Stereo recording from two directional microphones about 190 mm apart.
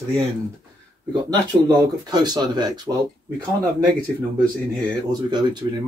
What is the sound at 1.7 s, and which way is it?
Speech, 20° right (ahead or behind).